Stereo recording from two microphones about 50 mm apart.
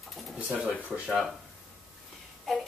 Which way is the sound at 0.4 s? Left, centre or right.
Right.